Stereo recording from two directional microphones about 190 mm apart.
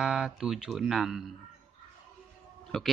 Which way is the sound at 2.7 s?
5° left (ahead or behind).